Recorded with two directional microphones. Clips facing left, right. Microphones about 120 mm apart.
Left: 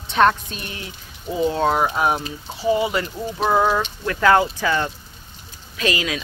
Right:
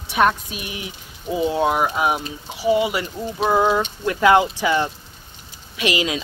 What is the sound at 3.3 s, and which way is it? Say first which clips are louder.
Speech: even; centre (ahead or behind).